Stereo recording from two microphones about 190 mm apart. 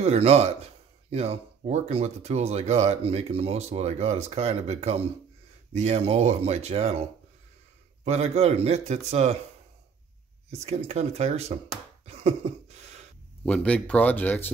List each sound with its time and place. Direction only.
0.0 s speech: 35° right (ahead or behind)
10.5 s speech: 35° right (ahead or behind)
12.1 s cough: 35° right (ahead or behind)
13.5 s speech: 5° left (ahead or behind)